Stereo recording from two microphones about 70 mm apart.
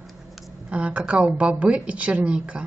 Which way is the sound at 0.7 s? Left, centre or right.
Centre.